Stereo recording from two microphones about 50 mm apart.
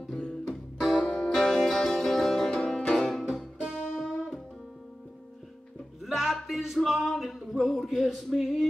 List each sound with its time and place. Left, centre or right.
0.0 s music: centre
1.0 s music: centre
3.7 s music: centre
6.0 s music: centre
7.1 s a sound: centre